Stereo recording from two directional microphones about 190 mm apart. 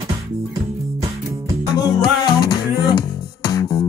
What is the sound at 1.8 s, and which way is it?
Music, 20° left (ahead or behind).